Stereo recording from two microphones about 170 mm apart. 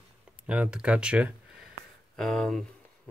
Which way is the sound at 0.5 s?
5° right (ahead or behind).